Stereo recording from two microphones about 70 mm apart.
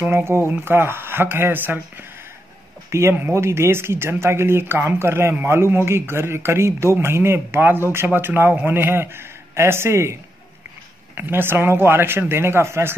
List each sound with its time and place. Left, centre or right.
0.0 s a man's voice: right
2.9 s a man's voice: right
11.1 s a man's voice: right